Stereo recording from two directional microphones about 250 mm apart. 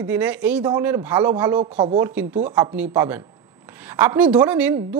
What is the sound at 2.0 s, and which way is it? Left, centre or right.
A woman's voice, centre.